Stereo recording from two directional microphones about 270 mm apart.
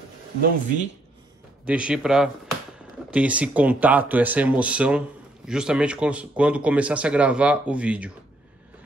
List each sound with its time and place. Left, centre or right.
0.4 s speech: right
1.7 s a man's voice: centre